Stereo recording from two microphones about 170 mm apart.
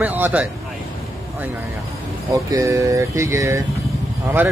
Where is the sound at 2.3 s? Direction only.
20° right (ahead or behind).